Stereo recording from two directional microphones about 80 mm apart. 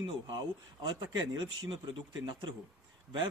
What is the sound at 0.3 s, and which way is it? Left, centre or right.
Speech, right.